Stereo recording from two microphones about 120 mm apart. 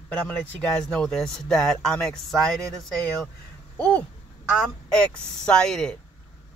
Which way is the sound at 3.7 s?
10° left (ahead or behind).